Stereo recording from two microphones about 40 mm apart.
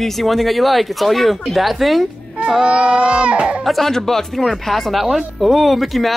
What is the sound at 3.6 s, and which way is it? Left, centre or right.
Speech, centre.